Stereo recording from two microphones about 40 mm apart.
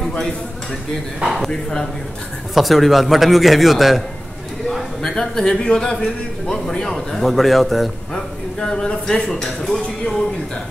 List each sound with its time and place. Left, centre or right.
1.2 s a man's voice: centre
1.5 s speech: centre
2.5 s a man's voice: centre
4.6 s a sound: centre
5.1 s a man's voice: centre
8.1 s a man's voice: centre